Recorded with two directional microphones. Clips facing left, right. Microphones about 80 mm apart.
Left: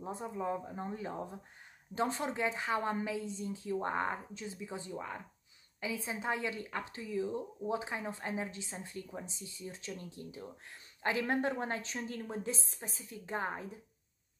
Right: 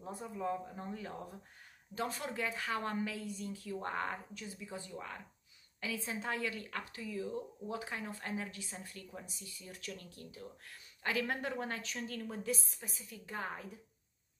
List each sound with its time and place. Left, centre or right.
0.0 s speech: left